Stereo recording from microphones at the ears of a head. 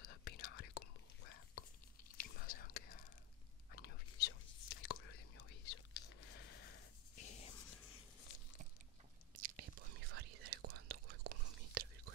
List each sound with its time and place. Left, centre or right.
0.0 s whispering: left
9.4 s whispering: right